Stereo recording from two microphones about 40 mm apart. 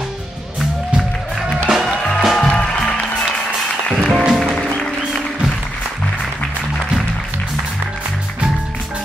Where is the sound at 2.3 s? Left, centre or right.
Left.